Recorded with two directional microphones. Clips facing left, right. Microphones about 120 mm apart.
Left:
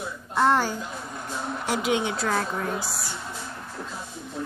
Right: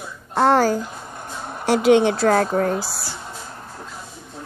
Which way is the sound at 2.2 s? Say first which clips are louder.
Right 9 dB; 45° right (ahead or behind).